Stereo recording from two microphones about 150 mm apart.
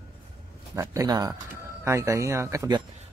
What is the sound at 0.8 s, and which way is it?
Speech, 25° right (ahead or behind).